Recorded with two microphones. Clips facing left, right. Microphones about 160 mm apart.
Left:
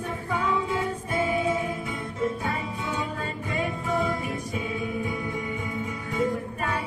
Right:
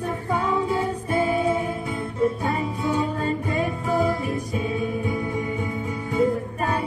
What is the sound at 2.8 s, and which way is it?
Music, 30° right (ahead or behind).